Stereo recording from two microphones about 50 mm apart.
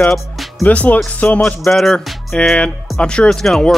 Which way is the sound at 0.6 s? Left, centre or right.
Left.